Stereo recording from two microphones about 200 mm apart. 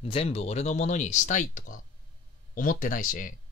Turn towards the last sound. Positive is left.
turn(degrees=40)  # may be behind; listen again after turning